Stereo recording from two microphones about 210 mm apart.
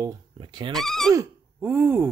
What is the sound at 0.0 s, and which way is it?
Speech, 20° right (ahead or behind).